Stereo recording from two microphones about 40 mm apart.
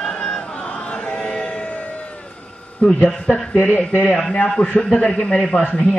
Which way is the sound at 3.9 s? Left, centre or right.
Left.